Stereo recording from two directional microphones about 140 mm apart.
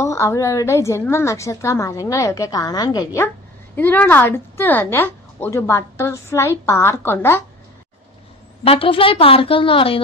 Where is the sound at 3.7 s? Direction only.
15° left (ahead or behind).